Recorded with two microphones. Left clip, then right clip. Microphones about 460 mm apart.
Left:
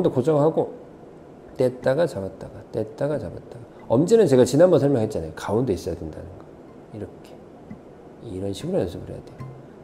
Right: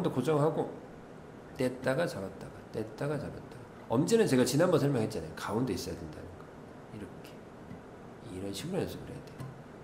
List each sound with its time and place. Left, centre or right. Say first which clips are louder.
0.0 s speech: left 10 dB; left
1.6 s speech: left 11 dB; left
8.3 s speech: left 11 dB; left